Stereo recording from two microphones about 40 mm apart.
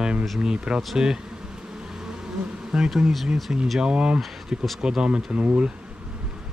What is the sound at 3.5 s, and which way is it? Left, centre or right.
Speech, right.